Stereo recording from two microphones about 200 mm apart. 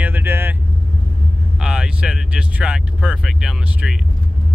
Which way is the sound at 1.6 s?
5° right (ahead or behind).